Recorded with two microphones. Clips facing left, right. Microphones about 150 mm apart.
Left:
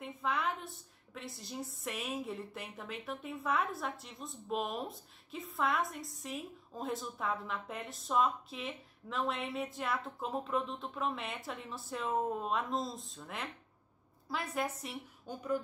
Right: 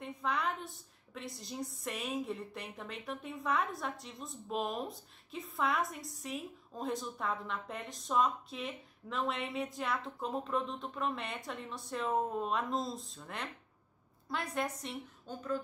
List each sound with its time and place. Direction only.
0.0 s speech: centre (ahead or behind)